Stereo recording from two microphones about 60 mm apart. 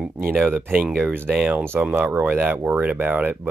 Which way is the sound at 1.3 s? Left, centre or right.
Centre.